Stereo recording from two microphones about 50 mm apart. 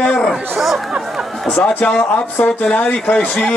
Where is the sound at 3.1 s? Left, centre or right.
Centre.